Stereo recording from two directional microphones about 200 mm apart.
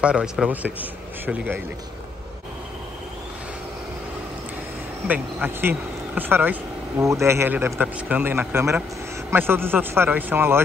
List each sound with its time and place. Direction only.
0.0 s a man's voice: 5° right (ahead or behind)
5.0 s speech: 10° right (ahead or behind)